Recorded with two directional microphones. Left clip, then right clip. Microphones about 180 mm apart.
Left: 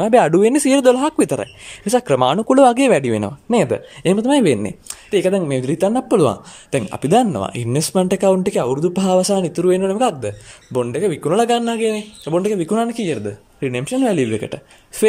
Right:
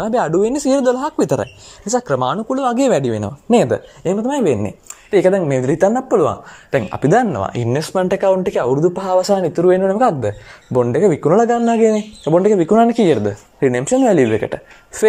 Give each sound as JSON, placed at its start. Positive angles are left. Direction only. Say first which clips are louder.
{"t": 0.0, "sound": "speech", "louder": "left 3 dB", "side_deg": 20}
{"t": 2.3, "sound": "speech", "louder": "left 7 dB", "side_deg": 30}
{"t": 2.7, "sound": "speech", "louder": "even", "side_deg": 10}
{"t": 7.1, "sound": "speech", "louder": "right 1 dB", "side_deg": 25}
{"t": 7.4, "sound": "speech", "louder": "right 2 dB", "side_deg": 15}